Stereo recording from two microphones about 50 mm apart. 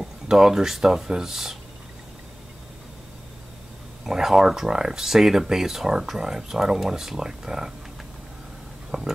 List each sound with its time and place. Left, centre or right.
0.0 s speech: centre
4.0 s speech: centre
8.9 s speech: centre